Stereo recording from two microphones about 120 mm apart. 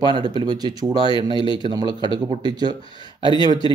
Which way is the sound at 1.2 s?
40° right (ahead or behind).